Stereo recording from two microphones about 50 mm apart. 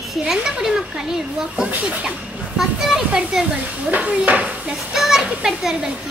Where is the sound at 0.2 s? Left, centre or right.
Centre.